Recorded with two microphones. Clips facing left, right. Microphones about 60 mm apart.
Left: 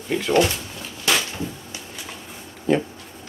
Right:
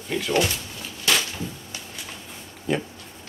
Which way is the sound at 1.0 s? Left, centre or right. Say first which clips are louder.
Left 1 dB; centre.